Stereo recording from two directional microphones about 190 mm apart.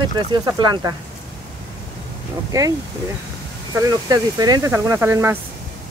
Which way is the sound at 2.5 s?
20° right (ahead or behind).